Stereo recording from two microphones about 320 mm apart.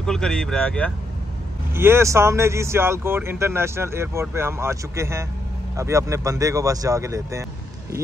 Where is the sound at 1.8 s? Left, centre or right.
Centre.